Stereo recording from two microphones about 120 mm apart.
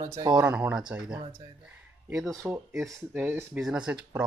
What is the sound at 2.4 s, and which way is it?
Speech, 20° right (ahead or behind).